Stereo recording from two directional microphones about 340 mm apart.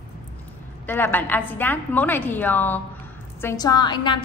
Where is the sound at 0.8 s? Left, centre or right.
Centre.